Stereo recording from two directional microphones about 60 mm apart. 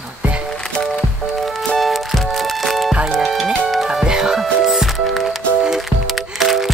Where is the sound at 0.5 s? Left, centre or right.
Centre.